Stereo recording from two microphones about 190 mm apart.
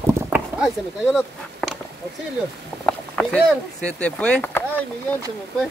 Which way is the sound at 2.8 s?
5° left (ahead or behind).